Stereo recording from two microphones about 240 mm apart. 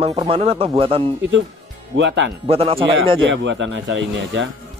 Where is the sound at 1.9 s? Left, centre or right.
Right.